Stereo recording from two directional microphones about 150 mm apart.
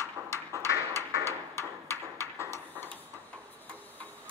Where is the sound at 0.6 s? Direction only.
20° right (ahead or behind).